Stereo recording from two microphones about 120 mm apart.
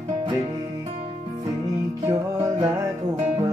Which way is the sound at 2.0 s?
30° right (ahead or behind).